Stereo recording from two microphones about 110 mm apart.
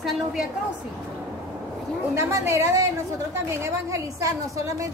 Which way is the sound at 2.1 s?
25° right (ahead or behind).